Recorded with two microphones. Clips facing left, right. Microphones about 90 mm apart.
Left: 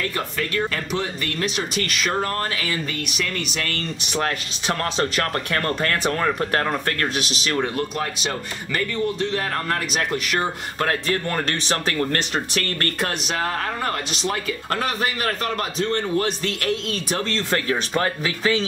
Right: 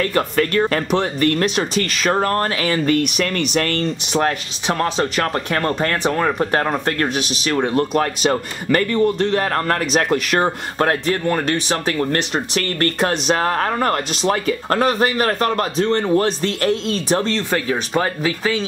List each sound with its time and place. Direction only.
0.1 s speech: 50° right (ahead or behind)
4.1 s speech: 20° right (ahead or behind)
7.7 s speech: 45° right (ahead or behind)
11.1 s speech: 15° right (ahead or behind)
13.3 s speech: 45° right (ahead or behind); by 18.6 s 20° right (ahead or behind)